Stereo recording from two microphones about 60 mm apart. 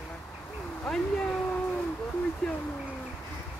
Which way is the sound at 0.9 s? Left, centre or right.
Centre.